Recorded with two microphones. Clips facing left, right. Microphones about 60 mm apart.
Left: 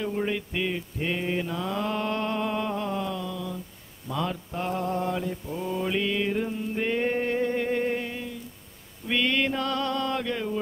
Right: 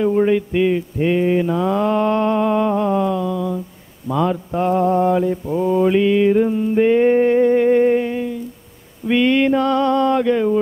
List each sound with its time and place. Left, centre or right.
0.0 s mantra: right
9.0 s male singing: right